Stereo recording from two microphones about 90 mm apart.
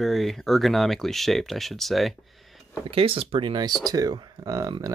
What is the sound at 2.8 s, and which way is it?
Speech, 90° right.